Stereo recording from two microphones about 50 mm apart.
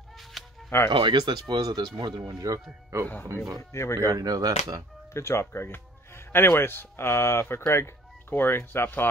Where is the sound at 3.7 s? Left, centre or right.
Left.